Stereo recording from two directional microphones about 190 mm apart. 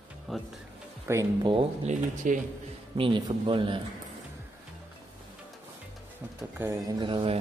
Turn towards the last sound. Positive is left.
turn(degrees=-30)  # may be behind; listen again after turning